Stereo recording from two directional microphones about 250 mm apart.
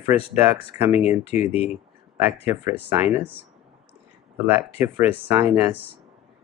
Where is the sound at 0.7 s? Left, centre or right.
Centre.